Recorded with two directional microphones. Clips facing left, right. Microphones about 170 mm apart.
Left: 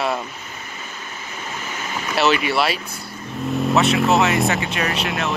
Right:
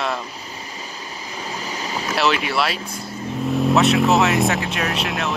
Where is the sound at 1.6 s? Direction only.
35° right (ahead or behind).